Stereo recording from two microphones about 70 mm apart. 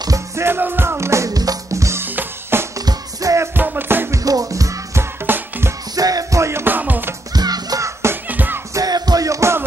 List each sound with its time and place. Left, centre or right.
0.4 s music: right
1.3 s music: right
2.0 s drum kit: right
2.8 s music: right
3.5 s music: right
4.1 s music: right
5.2 s music: right
5.9 s music: right
6.4 s music: right
7.3 s music: right
7.8 s music: right
8.3 s music: right
8.7 s music: right